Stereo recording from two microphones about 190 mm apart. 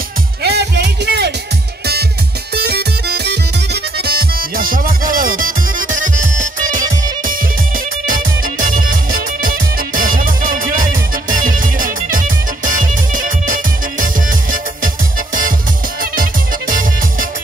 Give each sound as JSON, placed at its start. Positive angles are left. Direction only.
{"t": 0.4, "sound": "music", "side_deg": -60}
{"t": 2.5, "sound": "music", "side_deg": -60}
{"t": 8.7, "sound": "music", "side_deg": -50}